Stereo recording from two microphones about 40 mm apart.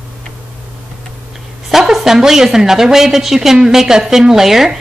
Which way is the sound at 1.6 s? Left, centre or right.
Centre.